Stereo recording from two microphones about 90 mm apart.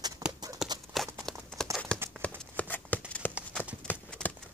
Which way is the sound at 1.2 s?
5° left (ahead or behind).